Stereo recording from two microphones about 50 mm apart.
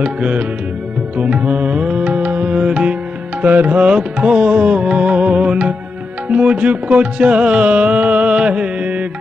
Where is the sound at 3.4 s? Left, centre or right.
Right.